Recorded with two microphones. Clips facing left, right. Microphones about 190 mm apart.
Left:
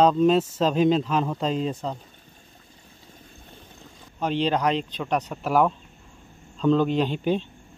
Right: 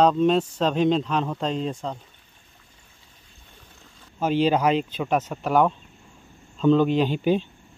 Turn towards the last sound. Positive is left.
turn(degrees=-5)  # may be behind; listen again after turning